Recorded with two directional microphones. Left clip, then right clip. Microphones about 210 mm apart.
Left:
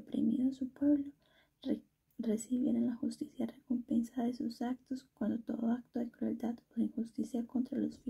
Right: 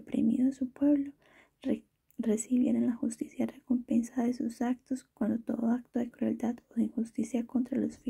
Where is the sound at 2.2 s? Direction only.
60° right (ahead or behind).